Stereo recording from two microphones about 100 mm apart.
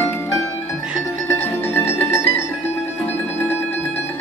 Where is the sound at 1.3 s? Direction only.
20° left (ahead or behind).